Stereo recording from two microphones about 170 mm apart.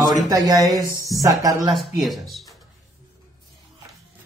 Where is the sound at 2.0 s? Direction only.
Centre (ahead or behind).